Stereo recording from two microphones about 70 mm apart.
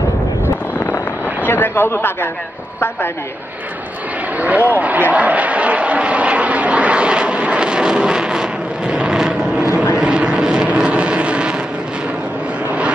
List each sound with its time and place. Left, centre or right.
1.4 s a man's voice: left
4.4 s vehicle: right